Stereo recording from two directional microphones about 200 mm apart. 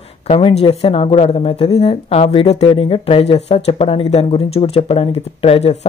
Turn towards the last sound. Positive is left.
turn(degrees=30)  # may be behind; listen again after turning